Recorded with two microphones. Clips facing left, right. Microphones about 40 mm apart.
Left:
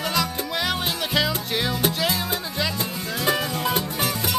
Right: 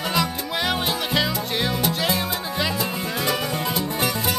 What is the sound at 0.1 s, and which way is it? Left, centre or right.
Music, centre.